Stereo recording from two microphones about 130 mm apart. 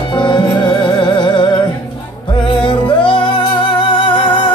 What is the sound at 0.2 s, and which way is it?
Music, 35° left (ahead or behind).